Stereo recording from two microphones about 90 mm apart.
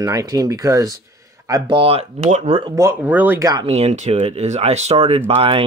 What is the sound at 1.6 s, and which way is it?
Speech, 85° right.